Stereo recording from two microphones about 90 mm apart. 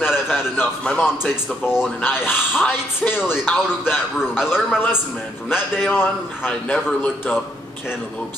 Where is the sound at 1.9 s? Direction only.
20° left (ahead or behind).